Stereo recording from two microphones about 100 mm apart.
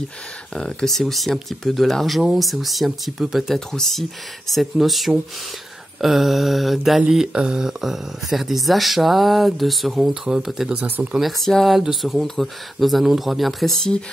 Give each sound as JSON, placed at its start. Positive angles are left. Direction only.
{"t": 0.6, "sound": "speech", "side_deg": 5}
{"t": 11.4, "sound": "speech", "side_deg": 0}